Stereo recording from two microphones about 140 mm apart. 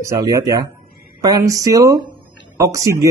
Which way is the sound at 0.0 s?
20° right (ahead or behind).